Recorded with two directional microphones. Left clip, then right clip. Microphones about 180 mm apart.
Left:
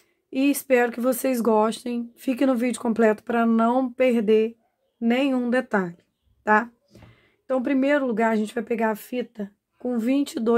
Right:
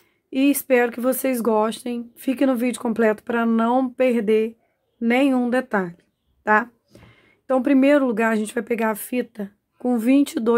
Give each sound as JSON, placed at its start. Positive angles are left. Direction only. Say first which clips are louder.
{"t": 0.3, "sound": "speech", "louder": "right 2 dB", "side_deg": -15}